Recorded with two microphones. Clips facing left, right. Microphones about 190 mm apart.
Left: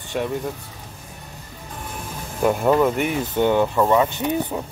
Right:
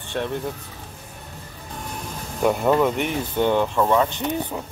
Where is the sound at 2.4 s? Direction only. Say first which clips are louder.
Left 1 dB; centre (ahead or behind).